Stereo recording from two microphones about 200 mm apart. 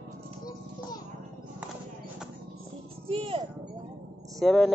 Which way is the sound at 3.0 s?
25° right (ahead or behind).